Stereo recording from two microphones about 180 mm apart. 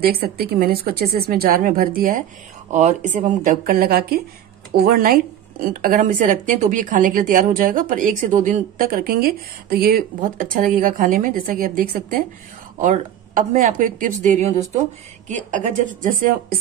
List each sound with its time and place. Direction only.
0.0 s a woman's voice: 60° right (ahead or behind)